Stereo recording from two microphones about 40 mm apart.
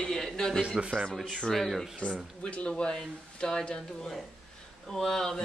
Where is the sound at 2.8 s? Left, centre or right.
Left.